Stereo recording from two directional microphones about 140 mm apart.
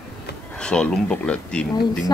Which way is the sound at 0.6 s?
5° left (ahead or behind).